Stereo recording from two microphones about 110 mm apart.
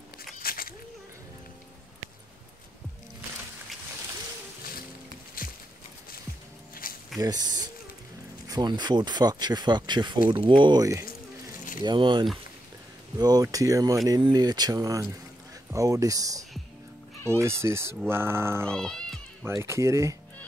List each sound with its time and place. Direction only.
7.2 s speech: 35° right (ahead or behind)
10.8 s speech: 30° right (ahead or behind)
11.8 s speech: 45° right (ahead or behind)
13.2 s speech: 35° right (ahead or behind)
18.7 s speech: 5° left (ahead or behind)
19.4 s speech: 25° right (ahead or behind)